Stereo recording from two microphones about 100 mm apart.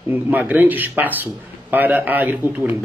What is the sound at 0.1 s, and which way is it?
A man's voice, 15° right (ahead or behind).